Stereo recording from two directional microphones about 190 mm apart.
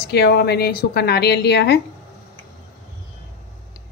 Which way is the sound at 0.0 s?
55° left (ahead or behind).